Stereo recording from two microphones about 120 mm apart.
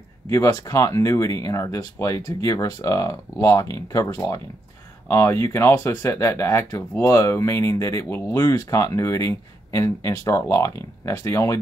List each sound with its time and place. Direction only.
0.3 s speech: 25° left (ahead or behind)